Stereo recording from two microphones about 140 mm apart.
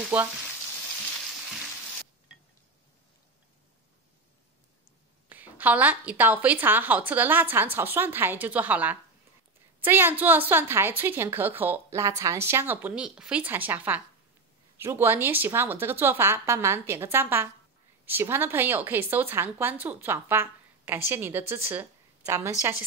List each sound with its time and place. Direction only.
0.1 s a woman's voice: 10° right (ahead or behind)
5.3 s a woman's voice: 10° right (ahead or behind)